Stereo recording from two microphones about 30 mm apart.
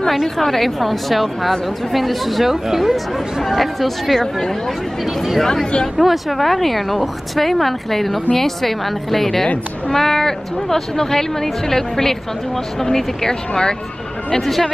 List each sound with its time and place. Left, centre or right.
0.4 s speech: centre
4.2 s speech: centre
5.0 s speech: centre
5.4 s speech: centre
5.9 s speech: centre; by 13.7 s left